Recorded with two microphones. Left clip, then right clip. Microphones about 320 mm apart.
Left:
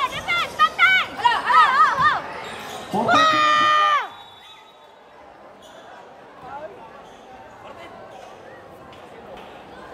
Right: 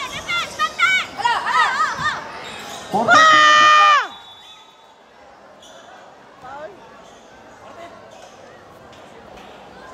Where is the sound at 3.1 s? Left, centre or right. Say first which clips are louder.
Right 6 dB; right.